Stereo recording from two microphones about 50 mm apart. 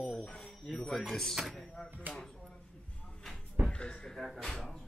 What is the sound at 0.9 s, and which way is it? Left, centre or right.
Speech, centre.